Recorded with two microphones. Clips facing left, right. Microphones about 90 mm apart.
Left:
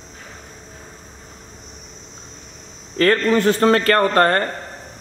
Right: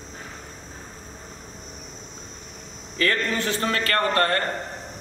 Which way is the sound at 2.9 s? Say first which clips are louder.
Left 8 dB; 55° left (ahead or behind).